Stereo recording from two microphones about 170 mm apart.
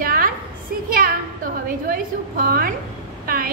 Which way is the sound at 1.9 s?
60° right (ahead or behind).